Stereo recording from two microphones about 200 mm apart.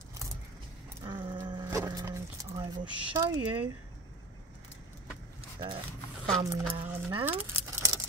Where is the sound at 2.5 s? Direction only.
25° right (ahead or behind).